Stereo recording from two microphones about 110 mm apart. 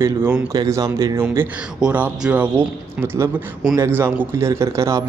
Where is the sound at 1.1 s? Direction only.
20° right (ahead or behind).